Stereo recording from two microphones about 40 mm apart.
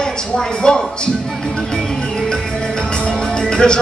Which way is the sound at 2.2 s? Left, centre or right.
Left.